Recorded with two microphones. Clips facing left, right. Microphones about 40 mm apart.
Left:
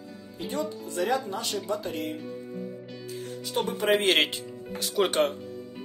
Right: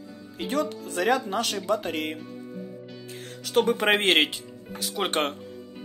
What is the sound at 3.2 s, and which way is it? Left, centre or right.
Speech, right.